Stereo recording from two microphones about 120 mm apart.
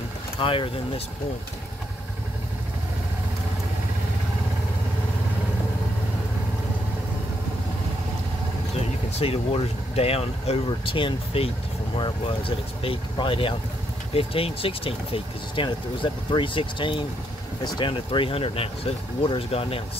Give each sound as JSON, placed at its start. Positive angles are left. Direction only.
{"t": 0.4, "sound": "speech", "side_deg": 45}
{"t": 9.1, "sound": "speech", "side_deg": 55}